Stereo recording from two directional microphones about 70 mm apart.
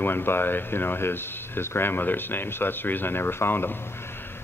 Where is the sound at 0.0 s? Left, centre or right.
Left.